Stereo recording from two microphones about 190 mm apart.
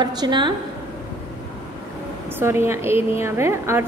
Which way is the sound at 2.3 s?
10° right (ahead or behind).